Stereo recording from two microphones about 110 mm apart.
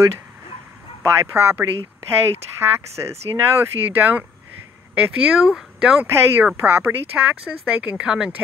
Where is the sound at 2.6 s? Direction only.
20° right (ahead or behind).